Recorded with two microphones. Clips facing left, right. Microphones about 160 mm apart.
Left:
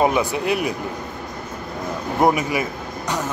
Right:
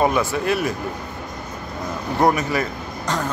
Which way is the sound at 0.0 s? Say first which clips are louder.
Even; 15° left (ahead or behind).